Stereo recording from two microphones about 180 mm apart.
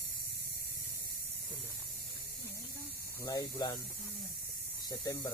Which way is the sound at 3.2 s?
20° left (ahead or behind).